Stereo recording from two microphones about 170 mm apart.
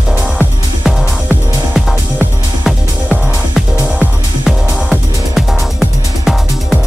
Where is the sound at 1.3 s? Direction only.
5° right (ahead or behind).